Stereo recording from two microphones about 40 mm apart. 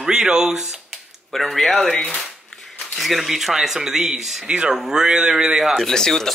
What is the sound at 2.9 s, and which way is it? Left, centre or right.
Speech, centre.